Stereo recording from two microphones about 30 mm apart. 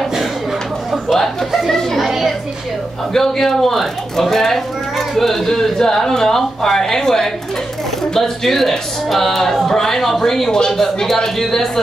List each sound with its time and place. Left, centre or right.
1.0 s chatter: centre
2.0 s a sound: centre
3.1 s speech: centre